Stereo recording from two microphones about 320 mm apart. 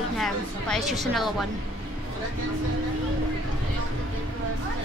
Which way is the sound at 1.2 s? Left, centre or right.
Centre.